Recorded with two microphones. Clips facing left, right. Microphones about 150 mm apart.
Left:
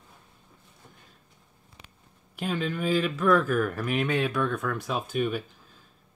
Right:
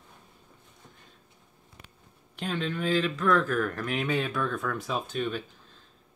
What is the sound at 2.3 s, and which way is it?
Speech, 5° left (ahead or behind).